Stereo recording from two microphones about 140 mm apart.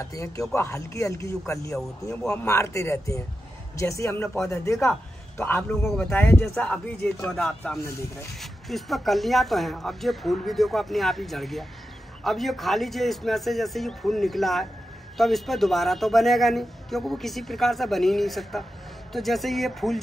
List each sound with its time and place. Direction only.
0.0 s speech: 25° left (ahead or behind)
5.9 s speech: 10° left (ahead or behind)